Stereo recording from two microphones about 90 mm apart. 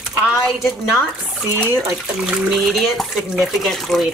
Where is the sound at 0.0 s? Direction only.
5° right (ahead or behind).